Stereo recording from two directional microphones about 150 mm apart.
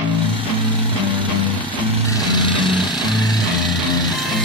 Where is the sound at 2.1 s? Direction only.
30° left (ahead or behind).